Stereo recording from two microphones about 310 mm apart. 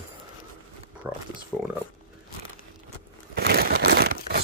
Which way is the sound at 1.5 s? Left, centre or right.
Centre.